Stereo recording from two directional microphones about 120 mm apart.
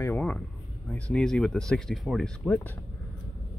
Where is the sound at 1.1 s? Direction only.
5° left (ahead or behind).